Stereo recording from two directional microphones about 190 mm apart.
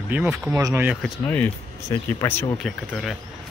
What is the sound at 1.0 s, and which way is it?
Speech, 5° left (ahead or behind).